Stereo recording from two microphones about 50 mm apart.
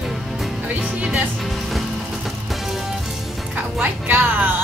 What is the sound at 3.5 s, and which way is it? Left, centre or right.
Music, right.